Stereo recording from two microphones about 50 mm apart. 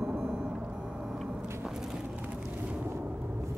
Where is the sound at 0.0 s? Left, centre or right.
Centre.